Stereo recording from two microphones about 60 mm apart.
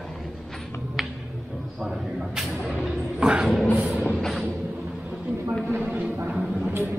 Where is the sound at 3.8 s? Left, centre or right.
Centre.